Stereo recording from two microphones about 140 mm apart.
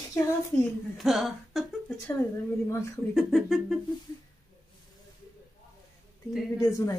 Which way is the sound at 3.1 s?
Centre (ahead or behind).